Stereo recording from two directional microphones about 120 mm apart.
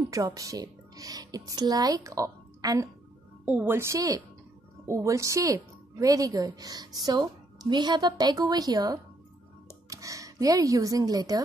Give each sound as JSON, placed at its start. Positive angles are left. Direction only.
{"t": 0.1, "sound": "speech", "side_deg": -25}
{"t": 3.4, "sound": "a woman's voice", "side_deg": -15}